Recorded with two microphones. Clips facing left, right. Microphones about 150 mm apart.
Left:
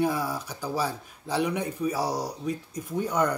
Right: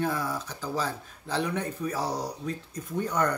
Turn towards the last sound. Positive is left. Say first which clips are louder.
# left 2 dB
turn(degrees=10)  # may be behind; listen again after turning